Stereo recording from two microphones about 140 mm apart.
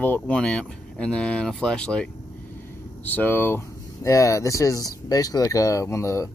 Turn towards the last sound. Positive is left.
turn(degrees=20)  # may be behind; listen again after turning